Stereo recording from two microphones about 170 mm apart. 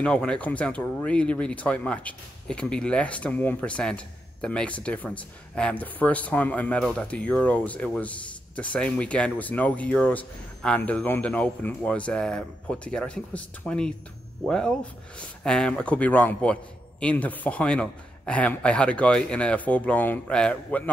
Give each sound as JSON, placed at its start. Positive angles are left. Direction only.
{"t": 0.0, "sound": "speech", "side_deg": 5}